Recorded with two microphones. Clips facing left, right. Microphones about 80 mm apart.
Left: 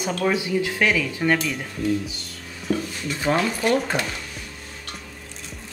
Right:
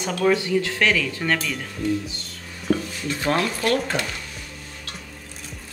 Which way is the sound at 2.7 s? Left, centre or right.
Right.